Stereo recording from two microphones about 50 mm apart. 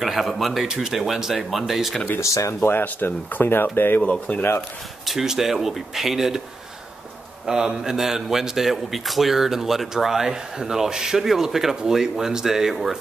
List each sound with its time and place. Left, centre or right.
0.0 s speech: centre
2.1 s speech: left
2.8 s speech: left
4.0 s speech: left
5.0 s speech: centre
7.4 s a man's voice: centre